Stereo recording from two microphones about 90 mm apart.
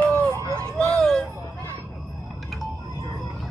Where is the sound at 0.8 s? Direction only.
5° left (ahead or behind).